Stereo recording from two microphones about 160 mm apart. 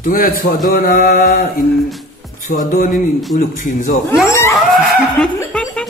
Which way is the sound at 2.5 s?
55° left (ahead or behind).